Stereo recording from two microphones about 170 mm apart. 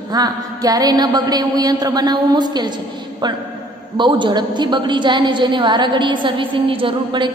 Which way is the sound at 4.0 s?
25° right (ahead or behind).